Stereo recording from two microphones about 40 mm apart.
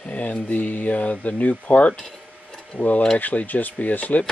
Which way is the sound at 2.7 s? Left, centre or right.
Left.